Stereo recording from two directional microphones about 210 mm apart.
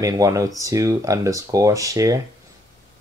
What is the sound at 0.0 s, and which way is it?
Speech, 15° right (ahead or behind).